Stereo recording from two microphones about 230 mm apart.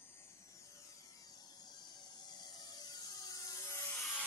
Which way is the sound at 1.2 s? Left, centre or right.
Centre.